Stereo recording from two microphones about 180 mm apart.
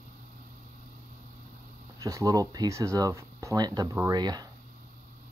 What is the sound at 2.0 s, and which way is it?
Speech, 20° right (ahead or behind).